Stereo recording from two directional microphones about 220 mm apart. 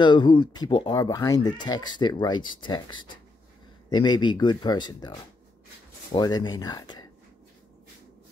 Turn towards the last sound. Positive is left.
turn(degrees=20)  # may be behind; listen again after turning